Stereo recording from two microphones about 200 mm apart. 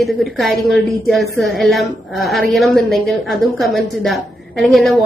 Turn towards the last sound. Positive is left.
turn(degrees=0)  # may be behind; listen again after turning